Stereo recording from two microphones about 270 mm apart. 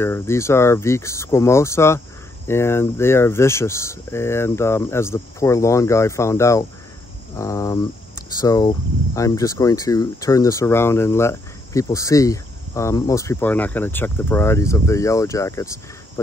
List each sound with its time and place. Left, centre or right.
0.0 s speech: centre